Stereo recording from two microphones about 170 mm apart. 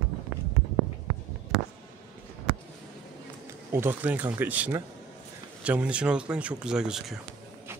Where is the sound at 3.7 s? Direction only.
10° right (ahead or behind).